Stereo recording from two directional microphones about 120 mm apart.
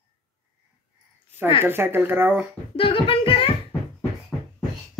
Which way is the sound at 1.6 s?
20° right (ahead or behind).